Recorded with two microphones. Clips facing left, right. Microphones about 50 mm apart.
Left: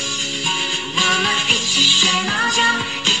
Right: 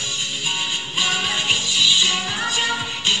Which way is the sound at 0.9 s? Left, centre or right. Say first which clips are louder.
Left 5 dB; left.